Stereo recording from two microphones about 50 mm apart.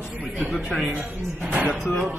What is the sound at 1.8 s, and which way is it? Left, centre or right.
Music, centre.